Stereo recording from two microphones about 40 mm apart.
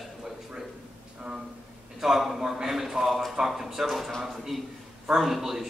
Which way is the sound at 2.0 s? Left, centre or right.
Centre.